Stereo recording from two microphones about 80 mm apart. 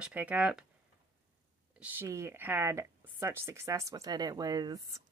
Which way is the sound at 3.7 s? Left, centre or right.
Right.